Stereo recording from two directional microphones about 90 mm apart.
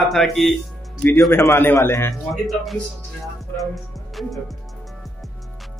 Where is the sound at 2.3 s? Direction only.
Centre (ahead or behind).